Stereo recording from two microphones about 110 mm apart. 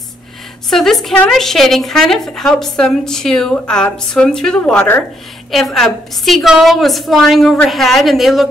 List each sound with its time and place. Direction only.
0.7 s a woman's voice: 5° left (ahead or behind)
5.5 s a woman's voice: centre (ahead or behind)